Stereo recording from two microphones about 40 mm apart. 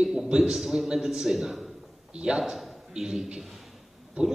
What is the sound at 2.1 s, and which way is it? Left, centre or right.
Speech, right.